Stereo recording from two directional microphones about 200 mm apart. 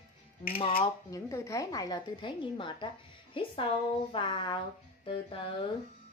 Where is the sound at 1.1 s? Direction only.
15° left (ahead or behind).